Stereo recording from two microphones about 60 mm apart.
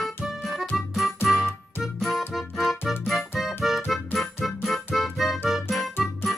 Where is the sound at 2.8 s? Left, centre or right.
Left.